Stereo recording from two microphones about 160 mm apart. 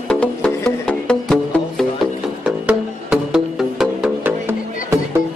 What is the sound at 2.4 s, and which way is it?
Music, 5° right (ahead or behind).